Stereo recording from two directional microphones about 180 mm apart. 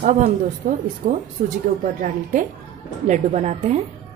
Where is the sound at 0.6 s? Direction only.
45° right (ahead or behind).